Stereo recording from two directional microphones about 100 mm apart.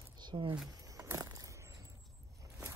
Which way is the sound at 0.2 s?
45° right (ahead or behind).